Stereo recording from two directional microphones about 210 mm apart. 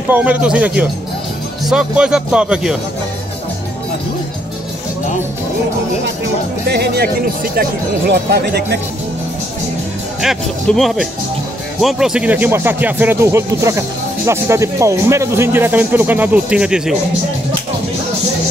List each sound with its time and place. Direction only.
0.1 s speech: 5° right (ahead or behind)
6.7 s speech: 50° right (ahead or behind)
8.1 s speech: 50° right (ahead or behind)
10.2 s speech: centre (ahead or behind)